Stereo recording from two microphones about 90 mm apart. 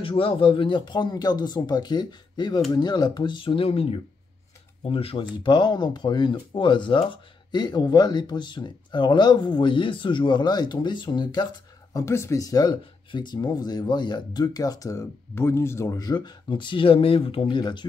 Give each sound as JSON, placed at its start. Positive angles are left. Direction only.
{"t": 0.0, "sound": "speech", "side_deg": 90}
{"t": 12.0, "sound": "speech", "side_deg": 30}
{"t": 16.0, "sound": "speech", "side_deg": 50}